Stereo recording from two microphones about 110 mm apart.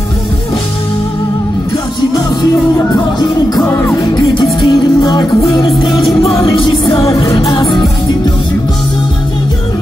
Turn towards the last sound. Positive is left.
turn(degrees=40)  # may be behind; listen again after turning